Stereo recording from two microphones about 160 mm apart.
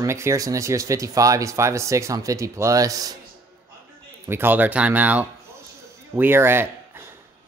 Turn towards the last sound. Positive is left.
turn(degrees=-15)  # may be behind; listen again after turning